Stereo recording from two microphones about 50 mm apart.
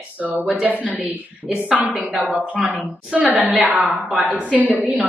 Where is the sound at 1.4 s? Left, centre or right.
Right.